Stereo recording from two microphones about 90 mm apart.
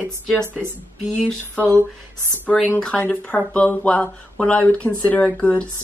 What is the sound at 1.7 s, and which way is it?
Speech, 30° right (ahead or behind).